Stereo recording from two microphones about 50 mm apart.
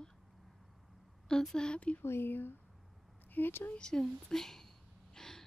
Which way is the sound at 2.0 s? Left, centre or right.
Left.